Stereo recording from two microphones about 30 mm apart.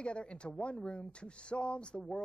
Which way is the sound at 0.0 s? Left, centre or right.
Left.